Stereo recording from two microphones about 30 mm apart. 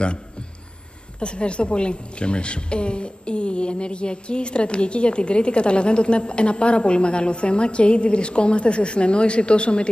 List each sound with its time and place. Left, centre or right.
1.2 s a woman's voice: left